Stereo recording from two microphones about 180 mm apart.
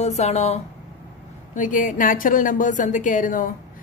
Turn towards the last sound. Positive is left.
turn(degrees=45)  # may be behind; listen again after turning